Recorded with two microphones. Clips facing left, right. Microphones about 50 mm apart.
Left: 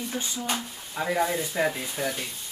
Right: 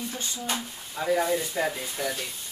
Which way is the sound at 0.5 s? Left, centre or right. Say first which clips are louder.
Left 1 dB; centre.